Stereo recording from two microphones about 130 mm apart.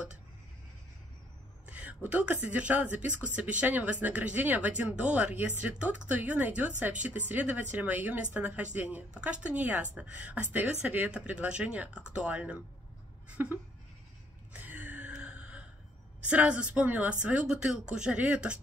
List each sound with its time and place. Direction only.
1.7 s a sound: 10° right (ahead or behind)
2.0 s speech: 10° right (ahead or behind)
14.5 s gasp: 15° right (ahead or behind)
16.3 s speech: 10° right (ahead or behind)